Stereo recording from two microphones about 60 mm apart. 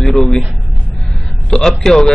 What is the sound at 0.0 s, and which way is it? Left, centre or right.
Music, centre.